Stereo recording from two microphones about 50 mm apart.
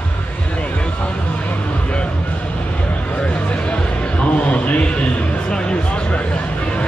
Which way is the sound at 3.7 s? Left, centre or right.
Left.